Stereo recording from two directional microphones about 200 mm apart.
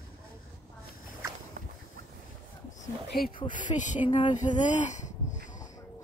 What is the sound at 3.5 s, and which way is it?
Speech, 40° left (ahead or behind).